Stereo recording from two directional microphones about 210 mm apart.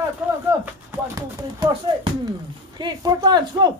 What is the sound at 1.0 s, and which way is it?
Speech, 20° right (ahead or behind).